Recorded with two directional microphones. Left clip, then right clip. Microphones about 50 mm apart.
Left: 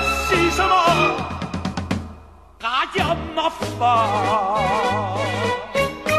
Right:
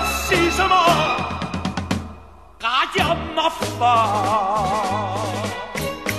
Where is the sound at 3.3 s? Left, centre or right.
Right.